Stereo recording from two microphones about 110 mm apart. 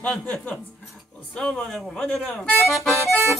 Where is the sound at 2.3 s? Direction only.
15° left (ahead or behind).